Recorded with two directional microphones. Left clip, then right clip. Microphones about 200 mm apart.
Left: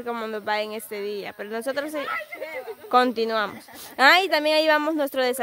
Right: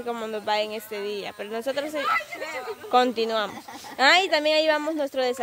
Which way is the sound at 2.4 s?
15° right (ahead or behind).